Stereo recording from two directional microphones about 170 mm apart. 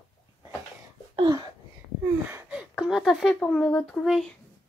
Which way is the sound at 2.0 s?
10° right (ahead or behind).